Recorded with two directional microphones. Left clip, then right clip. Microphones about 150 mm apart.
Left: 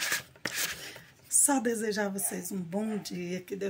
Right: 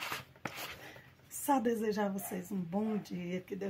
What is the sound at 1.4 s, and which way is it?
Speech, 20° right (ahead or behind).